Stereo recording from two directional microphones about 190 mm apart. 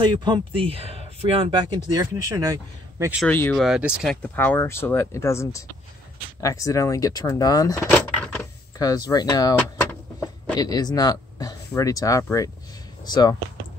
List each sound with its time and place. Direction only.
0.0 s speech: 25° right (ahead or behind)
3.3 s speech: 10° left (ahead or behind)
3.6 s speech: 5° right (ahead or behind); by 7.9 s 20° left (ahead or behind)
7.9 s a sound: 5° left (ahead or behind)
8.7 s speech: 20° left (ahead or behind)